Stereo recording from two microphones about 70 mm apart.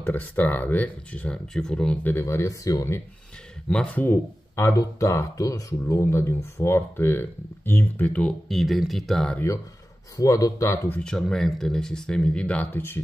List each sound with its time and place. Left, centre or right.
0.0 s speech: left
2.1 s speech: left
3.6 s speech: centre
4.1 s speech: left
4.7 s speech: left
8.3 s speech: centre
10.1 s speech: left
11.0 s speech: centre